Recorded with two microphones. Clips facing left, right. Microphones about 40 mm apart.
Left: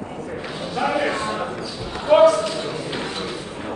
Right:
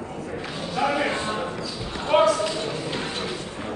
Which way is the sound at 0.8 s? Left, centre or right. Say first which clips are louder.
Left 2 dB; centre.